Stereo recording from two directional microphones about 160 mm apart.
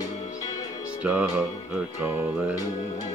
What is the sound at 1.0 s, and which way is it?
Speech, 10° right (ahead or behind).